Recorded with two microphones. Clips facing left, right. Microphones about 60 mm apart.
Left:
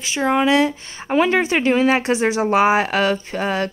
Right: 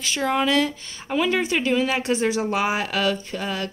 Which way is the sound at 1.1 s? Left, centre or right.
Left.